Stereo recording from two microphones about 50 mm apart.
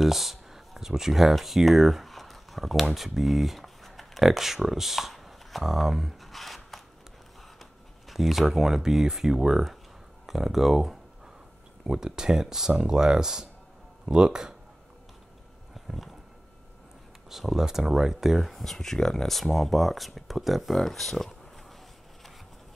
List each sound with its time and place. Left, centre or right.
0.0 s speech: centre
8.1 s speech: centre
15.7 s a sound: centre
17.3 s speech: centre